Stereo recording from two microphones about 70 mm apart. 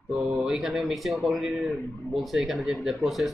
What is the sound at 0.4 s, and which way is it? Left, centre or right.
Speech, centre.